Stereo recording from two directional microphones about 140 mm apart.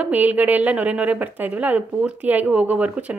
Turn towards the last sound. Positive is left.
turn(degrees=-10)  # may be behind; listen again after turning